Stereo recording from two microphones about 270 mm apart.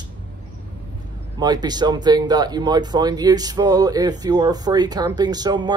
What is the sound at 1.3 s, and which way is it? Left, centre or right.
Speech, centre.